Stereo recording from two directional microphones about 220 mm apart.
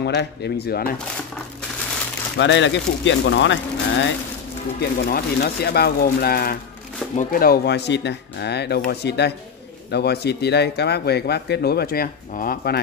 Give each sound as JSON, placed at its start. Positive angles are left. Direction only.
{"t": 0.0, "sound": "speech", "side_deg": 50}
{"t": 2.3, "sound": "speech", "side_deg": 55}
{"t": 4.7, "sound": "speech", "side_deg": 45}